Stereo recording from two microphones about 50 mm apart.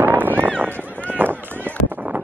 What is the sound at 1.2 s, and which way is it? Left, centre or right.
Run, right.